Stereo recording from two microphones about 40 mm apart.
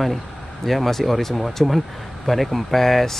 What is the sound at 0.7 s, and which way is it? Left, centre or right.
Speech, centre.